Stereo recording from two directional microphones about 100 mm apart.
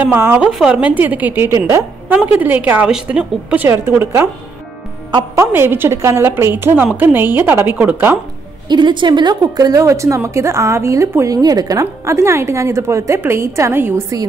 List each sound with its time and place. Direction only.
0.0 s a woman's voice: 20° right (ahead or behind)
0.5 s a woman's voice: 10° right (ahead or behind)
3.6 s a woman's voice: 25° right (ahead or behind)
5.4 s a woman's voice: 25° right (ahead or behind)
8.6 s a woman's voice: 50° right (ahead or behind); by 14.0 s 25° right (ahead or behind)